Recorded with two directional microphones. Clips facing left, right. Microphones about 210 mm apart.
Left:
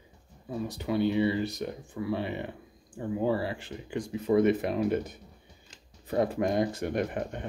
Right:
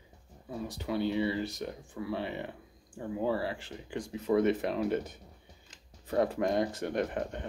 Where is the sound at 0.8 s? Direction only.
15° left (ahead or behind).